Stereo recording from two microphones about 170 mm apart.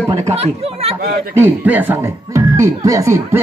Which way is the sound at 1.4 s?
10° right (ahead or behind).